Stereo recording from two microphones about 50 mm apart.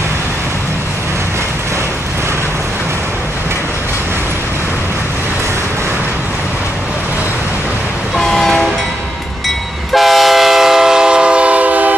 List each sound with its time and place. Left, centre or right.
8.2 s train: centre
9.9 s train: centre; by 11.9 s right